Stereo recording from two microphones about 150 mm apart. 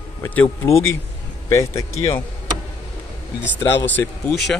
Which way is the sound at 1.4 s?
20° left (ahead or behind).